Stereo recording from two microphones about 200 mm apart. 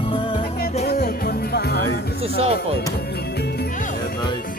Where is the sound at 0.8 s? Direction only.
50° left (ahead or behind).